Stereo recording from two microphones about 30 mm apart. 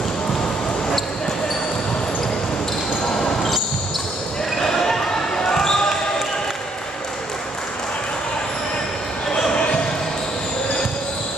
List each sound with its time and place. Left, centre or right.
4.6 s basketball bounce: centre